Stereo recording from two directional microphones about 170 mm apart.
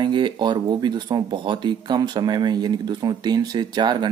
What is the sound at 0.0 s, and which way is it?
Speech, 25° right (ahead or behind).